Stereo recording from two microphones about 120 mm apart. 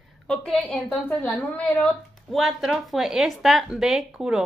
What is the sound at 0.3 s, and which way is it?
Speech, 5° left (ahead or behind).